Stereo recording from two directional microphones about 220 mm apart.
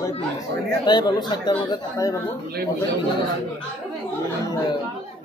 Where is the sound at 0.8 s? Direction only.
20° left (ahead or behind).